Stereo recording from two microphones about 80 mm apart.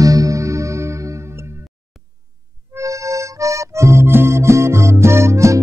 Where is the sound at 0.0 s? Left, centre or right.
Right.